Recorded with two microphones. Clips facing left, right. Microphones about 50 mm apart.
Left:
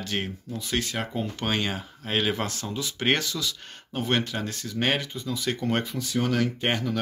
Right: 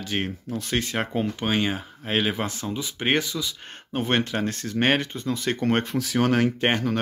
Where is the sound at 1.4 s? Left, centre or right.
Centre.